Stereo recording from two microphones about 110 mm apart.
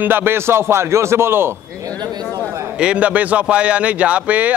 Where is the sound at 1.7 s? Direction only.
35° right (ahead or behind).